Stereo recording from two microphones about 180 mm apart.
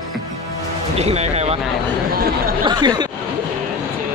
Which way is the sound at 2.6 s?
25° right (ahead or behind).